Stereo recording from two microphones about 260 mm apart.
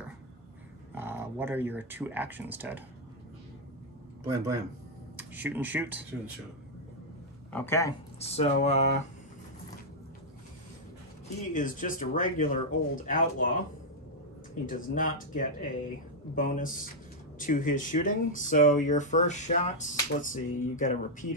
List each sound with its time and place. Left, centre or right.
0.9 s speech: centre
4.2 s speech: centre
7.5 s speech: centre
8.2 s speech: left
11.5 s speech: left
14.7 s speech: left